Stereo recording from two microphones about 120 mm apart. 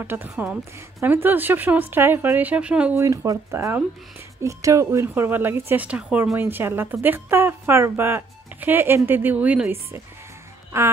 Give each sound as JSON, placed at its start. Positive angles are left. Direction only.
{"t": 0.0, "sound": "a woman's voice", "side_deg": -15}
{"t": 3.0, "sound": "a woman's voice", "side_deg": -25}